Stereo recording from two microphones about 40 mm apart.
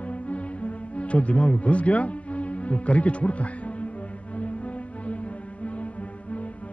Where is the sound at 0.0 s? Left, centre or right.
Left.